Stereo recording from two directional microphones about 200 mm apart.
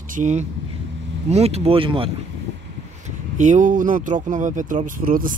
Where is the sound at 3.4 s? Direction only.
40° right (ahead or behind).